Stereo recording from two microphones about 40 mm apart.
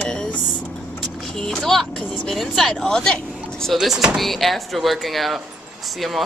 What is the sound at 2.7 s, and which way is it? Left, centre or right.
Speech, centre.